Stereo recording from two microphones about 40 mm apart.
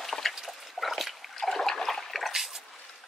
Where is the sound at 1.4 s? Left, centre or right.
Centre.